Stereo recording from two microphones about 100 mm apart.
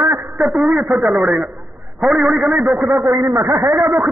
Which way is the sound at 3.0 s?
25° right (ahead or behind).